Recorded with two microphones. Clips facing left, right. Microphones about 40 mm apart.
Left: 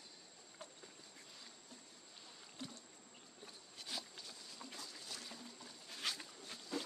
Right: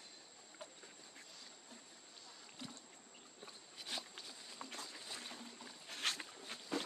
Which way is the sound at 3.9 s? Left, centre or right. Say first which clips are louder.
Right 1 dB; right.